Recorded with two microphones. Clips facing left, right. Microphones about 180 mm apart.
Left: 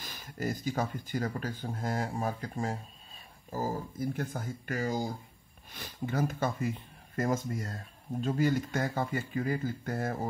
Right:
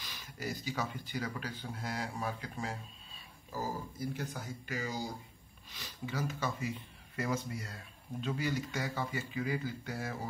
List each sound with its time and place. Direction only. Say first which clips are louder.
0.0 s speech: left 6 dB; 50° left (ahead or behind)